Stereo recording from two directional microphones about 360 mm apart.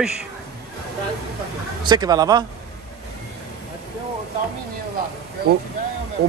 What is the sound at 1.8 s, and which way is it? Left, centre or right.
Speech, centre.